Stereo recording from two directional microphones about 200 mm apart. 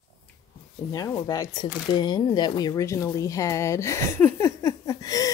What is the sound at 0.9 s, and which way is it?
Speech, 15° left (ahead or behind).